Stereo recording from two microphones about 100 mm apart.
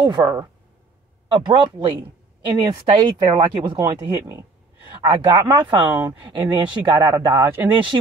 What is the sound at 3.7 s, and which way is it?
Speech, 30° right (ahead or behind).